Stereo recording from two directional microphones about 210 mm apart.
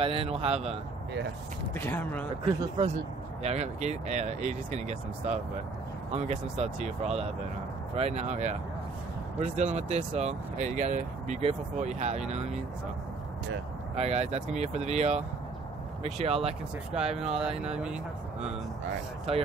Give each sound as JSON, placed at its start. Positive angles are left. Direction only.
{"t": 0.0, "sound": "a man's voice", "side_deg": -25}
{"t": 1.8, "sound": "speech", "side_deg": 10}
{"t": 3.4, "sound": "speech", "side_deg": -30}
{"t": 13.9, "sound": "a man's voice", "side_deg": -30}
{"t": 16.9, "sound": "speech", "side_deg": -5}
{"t": 19.3, "sound": "a man's voice", "side_deg": -30}